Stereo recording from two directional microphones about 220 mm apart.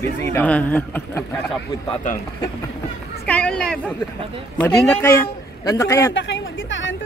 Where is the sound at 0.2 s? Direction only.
10° left (ahead or behind).